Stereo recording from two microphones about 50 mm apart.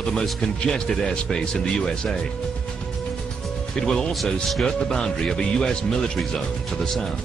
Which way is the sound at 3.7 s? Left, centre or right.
Centre.